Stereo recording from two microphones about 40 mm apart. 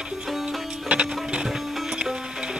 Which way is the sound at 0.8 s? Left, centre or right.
Right.